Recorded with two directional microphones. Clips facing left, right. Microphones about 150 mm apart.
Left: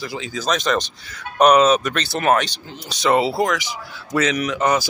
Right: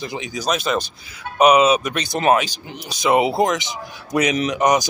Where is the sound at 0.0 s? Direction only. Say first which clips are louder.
Right 1 dB; 20° right (ahead or behind).